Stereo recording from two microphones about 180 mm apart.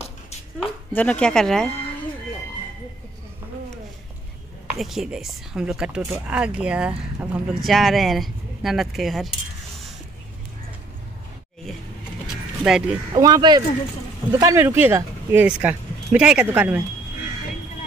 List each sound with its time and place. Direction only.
0.6 s a woman's voice: 5° left (ahead or behind)
4.6 s a woman's voice: centre (ahead or behind)
12.6 s a woman's voice: 5° right (ahead or behind)
13.1 s speech: 20° right (ahead or behind)